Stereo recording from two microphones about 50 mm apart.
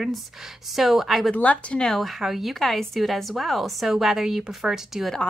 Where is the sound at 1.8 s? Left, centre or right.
Centre.